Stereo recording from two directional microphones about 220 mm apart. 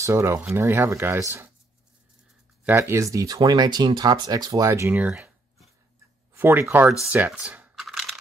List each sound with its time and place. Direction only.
0.0 s speech: 10° right (ahead or behind)
2.6 s speech: 10° right (ahead or behind)
7.1 s coin: 5° right (ahead or behind)